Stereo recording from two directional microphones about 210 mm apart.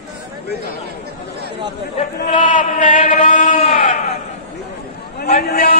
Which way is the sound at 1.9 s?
35° left (ahead or behind).